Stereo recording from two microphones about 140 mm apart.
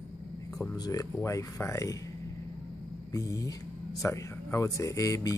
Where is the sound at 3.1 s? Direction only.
25° left (ahead or behind).